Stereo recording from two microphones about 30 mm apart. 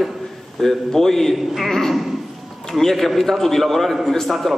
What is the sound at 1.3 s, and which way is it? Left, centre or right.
Speech, centre.